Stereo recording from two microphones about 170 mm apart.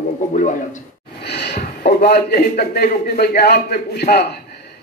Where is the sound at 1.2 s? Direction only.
80° left.